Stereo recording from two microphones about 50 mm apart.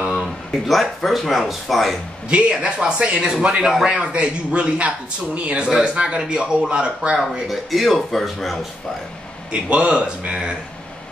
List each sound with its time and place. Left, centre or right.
0.1 s speech: centre
2.2 s a man's voice: right
7.4 s speech: centre
9.5 s a man's voice: right